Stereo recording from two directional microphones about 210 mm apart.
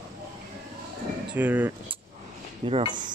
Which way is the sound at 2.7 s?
20° right (ahead or behind).